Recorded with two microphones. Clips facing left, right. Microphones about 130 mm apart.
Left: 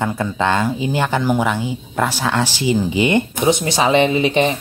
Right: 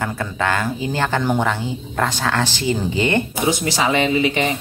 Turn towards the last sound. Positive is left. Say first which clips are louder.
# left 2 dB
turn(degrees=25)  # may be behind; listen again after turning